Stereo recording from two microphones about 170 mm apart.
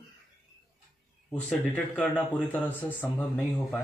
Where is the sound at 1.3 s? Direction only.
10° left (ahead or behind).